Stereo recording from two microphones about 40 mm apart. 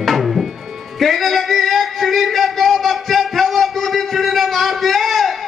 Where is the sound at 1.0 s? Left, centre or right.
Centre.